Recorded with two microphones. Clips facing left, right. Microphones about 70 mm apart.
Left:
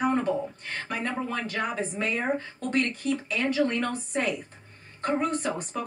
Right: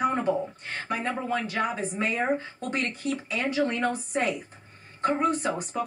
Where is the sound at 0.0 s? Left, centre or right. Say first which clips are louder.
Even; centre.